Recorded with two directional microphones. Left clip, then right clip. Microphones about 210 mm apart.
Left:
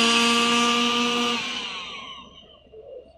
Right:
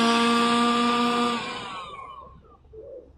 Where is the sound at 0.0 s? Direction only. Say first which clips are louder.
Left 2 dB; 10° right (ahead or behind).